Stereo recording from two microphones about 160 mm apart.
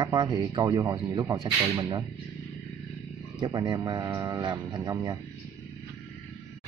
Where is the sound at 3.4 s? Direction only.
25° right (ahead or behind).